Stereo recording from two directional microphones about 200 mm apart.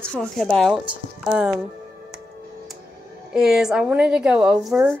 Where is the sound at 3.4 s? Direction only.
Centre (ahead or behind).